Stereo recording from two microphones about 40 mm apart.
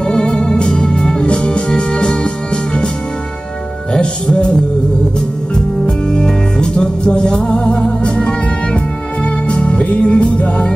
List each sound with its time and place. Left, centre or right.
0.0 s music: left
1.2 s music: left
3.9 s music: left
5.5 s music: left